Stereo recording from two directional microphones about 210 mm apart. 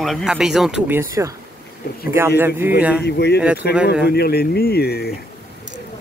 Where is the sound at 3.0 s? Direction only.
50° left (ahead or behind).